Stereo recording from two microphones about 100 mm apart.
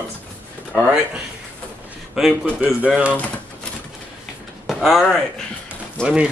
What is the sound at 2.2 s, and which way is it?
Speech, 5° right (ahead or behind).